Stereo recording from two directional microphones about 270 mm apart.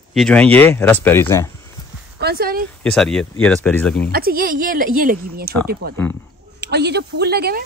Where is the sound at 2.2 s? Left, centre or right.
Right.